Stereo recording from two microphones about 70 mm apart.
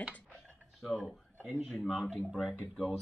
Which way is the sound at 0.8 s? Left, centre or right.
Centre.